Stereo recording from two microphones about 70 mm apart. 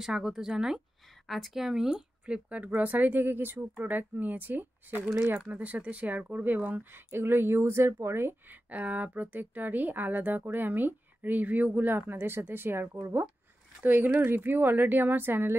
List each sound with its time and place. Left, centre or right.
0.0 s a woman's voice: centre; by 8.5 s right
8.6 s speech: right